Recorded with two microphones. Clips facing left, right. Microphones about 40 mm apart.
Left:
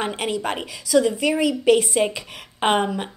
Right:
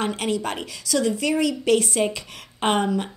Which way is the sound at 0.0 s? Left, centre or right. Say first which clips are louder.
Even; centre.